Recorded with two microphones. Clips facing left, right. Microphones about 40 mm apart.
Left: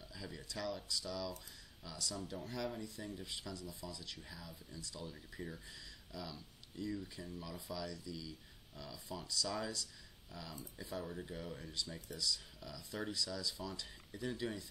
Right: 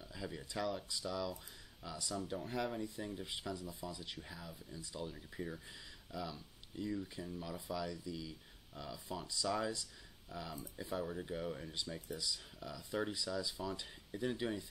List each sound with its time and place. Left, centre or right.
0.0 s speech: right